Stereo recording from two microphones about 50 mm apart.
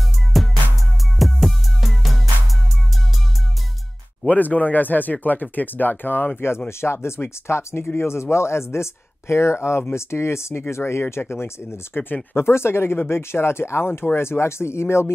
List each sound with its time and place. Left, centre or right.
0.3 s music: centre
4.3 s speech: left
6.8 s speech: left